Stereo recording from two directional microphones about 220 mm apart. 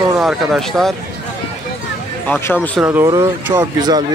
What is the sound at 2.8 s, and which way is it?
Speech, 10° right (ahead or behind).